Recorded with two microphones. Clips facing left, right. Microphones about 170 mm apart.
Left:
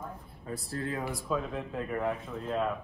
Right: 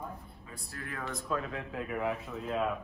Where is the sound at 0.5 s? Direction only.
35° left (ahead or behind).